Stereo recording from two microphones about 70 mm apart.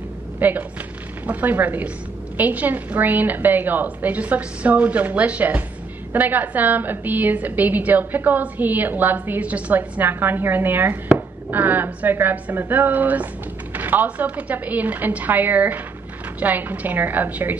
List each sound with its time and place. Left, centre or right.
0.4 s a woman's voice: right